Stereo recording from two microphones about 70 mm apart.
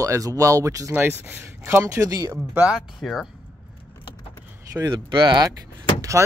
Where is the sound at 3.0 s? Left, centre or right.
Centre.